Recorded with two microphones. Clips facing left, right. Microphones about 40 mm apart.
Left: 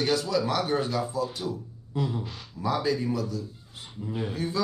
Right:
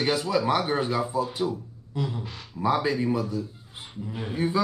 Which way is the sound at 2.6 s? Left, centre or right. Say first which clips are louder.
Right 3 dB; right.